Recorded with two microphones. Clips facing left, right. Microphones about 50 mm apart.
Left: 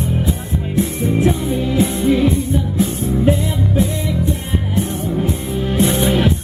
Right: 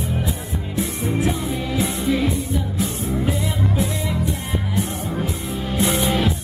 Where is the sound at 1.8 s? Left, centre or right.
Left.